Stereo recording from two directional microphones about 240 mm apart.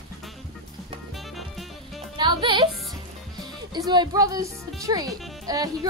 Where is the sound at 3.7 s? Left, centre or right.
Centre.